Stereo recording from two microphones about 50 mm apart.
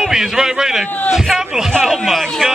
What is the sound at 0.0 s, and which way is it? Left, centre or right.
A man's voice, centre.